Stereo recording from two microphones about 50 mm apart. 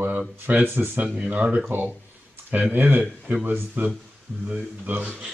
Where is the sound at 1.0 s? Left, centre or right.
Right.